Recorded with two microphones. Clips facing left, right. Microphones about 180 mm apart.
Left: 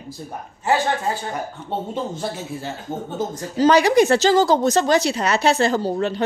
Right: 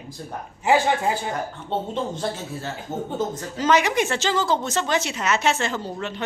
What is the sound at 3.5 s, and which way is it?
Speech, 35° left (ahead or behind).